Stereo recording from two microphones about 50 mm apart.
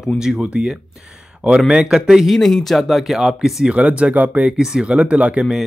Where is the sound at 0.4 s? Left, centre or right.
Right.